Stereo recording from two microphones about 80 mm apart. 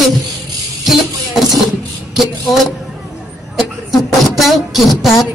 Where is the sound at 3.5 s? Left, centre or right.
Centre.